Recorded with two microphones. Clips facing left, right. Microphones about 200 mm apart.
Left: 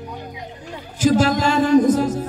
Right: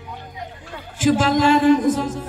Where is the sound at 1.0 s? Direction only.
40° left (ahead or behind).